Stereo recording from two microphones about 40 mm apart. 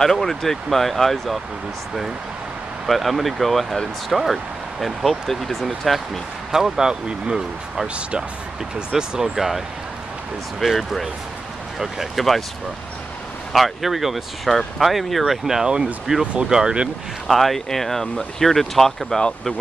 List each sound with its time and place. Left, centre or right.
0.0 s speech: centre
2.9 s speech: centre
6.5 s speech: centre
9.2 s speech: centre
10.6 s speech: centre
13.5 s speech: centre
15.6 s speech: centre
17.3 s speech: centre